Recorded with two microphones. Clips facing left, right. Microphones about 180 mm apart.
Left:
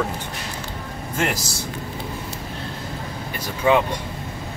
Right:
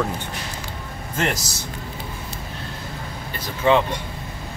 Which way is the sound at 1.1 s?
10° left (ahead or behind).